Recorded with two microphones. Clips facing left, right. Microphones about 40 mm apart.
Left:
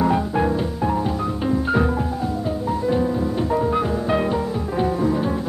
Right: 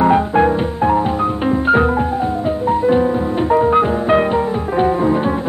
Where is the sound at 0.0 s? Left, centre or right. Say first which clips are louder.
Right 7 dB; right.